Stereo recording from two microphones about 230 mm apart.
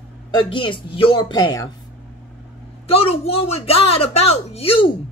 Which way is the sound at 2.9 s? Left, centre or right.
Left.